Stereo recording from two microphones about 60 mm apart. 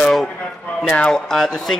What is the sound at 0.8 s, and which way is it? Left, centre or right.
Speech, centre.